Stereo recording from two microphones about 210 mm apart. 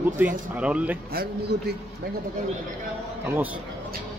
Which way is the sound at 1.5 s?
50° right (ahead or behind).